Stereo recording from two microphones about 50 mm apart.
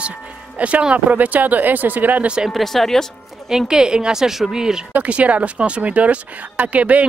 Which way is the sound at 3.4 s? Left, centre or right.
Centre.